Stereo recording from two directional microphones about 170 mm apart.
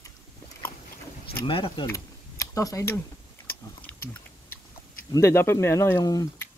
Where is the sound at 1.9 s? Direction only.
20° left (ahead or behind).